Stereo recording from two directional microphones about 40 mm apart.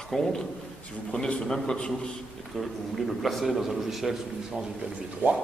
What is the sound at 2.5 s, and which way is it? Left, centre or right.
A man's voice, centre.